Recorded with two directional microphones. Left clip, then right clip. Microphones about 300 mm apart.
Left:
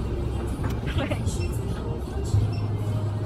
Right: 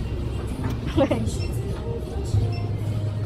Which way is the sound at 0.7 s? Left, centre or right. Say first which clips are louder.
Right 10 dB; centre.